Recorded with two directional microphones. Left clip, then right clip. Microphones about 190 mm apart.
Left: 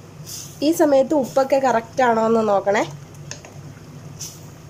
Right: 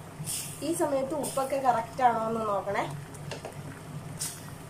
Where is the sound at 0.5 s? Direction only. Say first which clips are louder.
Left 13 dB; 55° left (ahead or behind).